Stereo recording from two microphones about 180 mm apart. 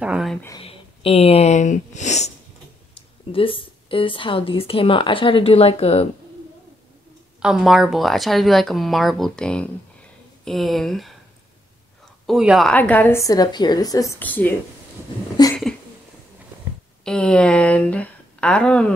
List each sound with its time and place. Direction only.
0.0 s speech: 5° right (ahead or behind)
0.6 s a woman's voice: 30° left (ahead or behind)
7.4 s speech: centre (ahead or behind)
12.3 s a woman's voice: centre (ahead or behind); by 14.1 s 20° left (ahead or behind)
14.2 s a woman's voice: 10° left (ahead or behind)
15.4 s a sound: 20° left (ahead or behind)
17.0 s speech: 5° left (ahead or behind)